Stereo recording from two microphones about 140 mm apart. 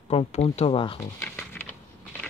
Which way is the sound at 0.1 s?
50° left (ahead or behind).